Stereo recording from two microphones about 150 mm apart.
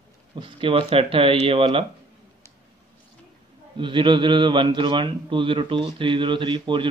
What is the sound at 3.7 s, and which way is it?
A man's voice, 35° right (ahead or behind).